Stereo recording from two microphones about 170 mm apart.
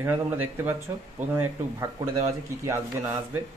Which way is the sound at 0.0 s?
10° right (ahead or behind).